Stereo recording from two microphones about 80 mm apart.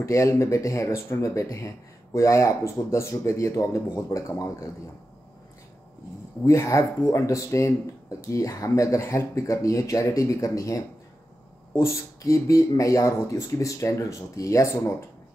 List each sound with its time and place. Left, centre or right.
0.0 s speech: left
6.4 s speech: left